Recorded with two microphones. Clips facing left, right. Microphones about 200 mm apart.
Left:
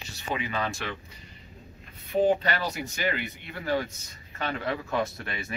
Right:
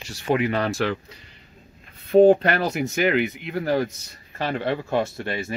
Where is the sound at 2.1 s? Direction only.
60° right (ahead or behind).